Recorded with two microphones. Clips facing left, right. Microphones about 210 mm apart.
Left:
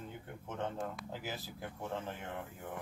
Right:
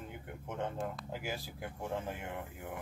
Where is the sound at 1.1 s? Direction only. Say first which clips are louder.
Right 2 dB; 15° right (ahead or behind).